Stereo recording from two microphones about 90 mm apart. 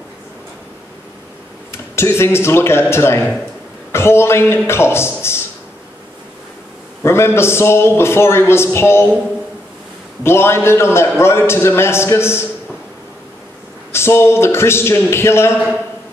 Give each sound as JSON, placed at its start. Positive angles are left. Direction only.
{"t": 1.7, "sound": "a man's voice", "side_deg": 30}
{"t": 7.0, "sound": "a man's voice", "side_deg": 30}
{"t": 10.2, "sound": "a man's voice", "side_deg": 30}
{"t": 13.9, "sound": "a man's voice", "side_deg": 30}